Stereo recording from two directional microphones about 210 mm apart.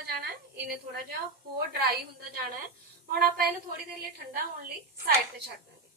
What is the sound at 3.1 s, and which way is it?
Speech, 45° right (ahead or behind).